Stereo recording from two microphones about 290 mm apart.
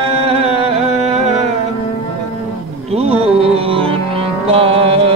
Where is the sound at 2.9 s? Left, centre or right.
Right.